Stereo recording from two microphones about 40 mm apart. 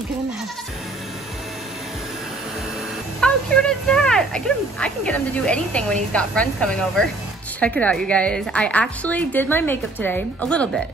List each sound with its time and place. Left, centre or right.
3.2 s speech: centre
7.6 s speech: left
10.4 s speech: left